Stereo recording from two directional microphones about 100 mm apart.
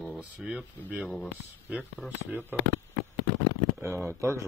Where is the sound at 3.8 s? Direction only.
25° right (ahead or behind).